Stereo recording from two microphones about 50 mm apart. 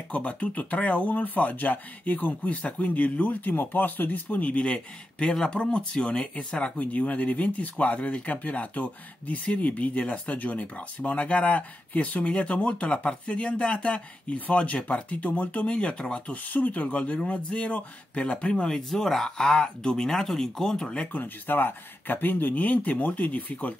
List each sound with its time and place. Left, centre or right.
0.1 s speech: left
6.6 s speech: left
15.6 s speech: centre
16.4 s speech: left
18.7 s speech: centre
21.0 s speech: left